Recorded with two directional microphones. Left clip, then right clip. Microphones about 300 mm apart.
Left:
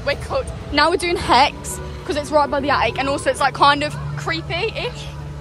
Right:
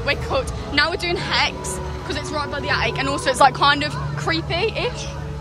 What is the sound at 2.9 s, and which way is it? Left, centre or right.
A woman's voice, centre.